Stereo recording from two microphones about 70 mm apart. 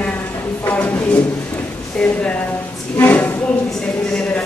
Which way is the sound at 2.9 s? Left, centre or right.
Left.